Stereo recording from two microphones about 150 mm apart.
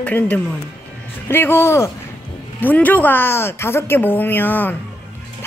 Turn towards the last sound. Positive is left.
turn(degrees=10)  # may be behind; listen again after turning